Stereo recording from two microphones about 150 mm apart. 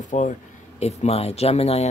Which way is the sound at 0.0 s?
55° left (ahead or behind).